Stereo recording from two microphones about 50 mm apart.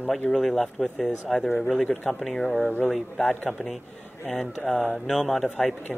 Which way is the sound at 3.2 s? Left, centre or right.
Left.